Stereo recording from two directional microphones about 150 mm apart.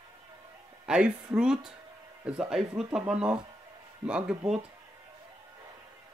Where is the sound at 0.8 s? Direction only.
5° right (ahead or behind).